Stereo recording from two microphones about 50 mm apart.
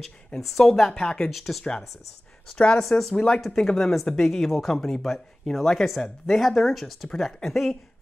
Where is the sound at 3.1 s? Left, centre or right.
Left.